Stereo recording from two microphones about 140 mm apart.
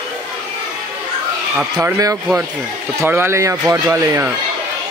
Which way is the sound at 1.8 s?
20° right (ahead or behind).